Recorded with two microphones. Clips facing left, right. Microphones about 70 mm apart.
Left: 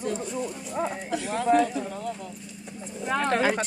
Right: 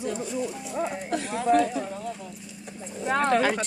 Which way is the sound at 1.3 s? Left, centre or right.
Left.